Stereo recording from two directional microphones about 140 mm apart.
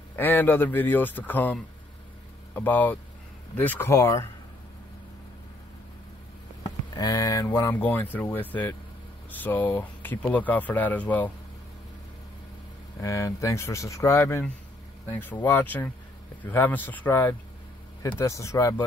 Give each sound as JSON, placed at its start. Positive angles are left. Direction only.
{"t": 0.1, "sound": "speech", "side_deg": 15}
{"t": 7.0, "sound": "speech", "side_deg": 25}
{"t": 13.0, "sound": "speech", "side_deg": 20}